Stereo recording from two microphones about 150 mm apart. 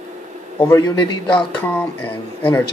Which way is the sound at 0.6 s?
20° left (ahead or behind).